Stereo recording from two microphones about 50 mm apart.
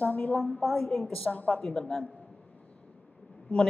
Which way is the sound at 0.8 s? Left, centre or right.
Centre.